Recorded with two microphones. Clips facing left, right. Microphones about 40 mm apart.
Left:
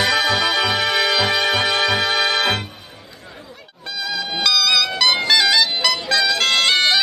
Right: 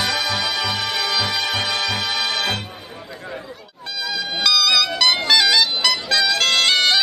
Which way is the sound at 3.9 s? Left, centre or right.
Centre.